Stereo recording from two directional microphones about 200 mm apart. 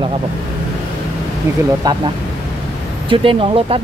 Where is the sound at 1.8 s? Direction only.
20° right (ahead or behind).